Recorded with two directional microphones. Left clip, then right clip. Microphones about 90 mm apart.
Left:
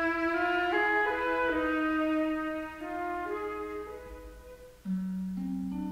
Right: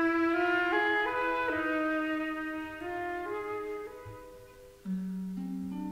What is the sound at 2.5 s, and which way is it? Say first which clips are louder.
Brass instrument: left 1 dB; 30° left (ahead or behind).